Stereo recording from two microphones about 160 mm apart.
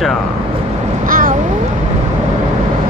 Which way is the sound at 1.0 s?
60° right (ahead or behind).